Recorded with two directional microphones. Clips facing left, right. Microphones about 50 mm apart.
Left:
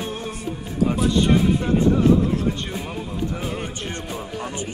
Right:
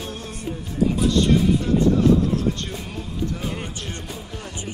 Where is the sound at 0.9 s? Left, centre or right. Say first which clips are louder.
Left 1 dB; centre.